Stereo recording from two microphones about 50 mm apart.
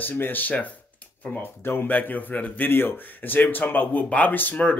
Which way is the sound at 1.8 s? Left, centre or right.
Left.